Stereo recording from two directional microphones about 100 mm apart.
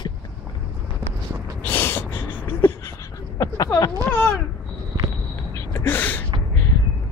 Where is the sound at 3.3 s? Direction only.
40° left (ahead or behind).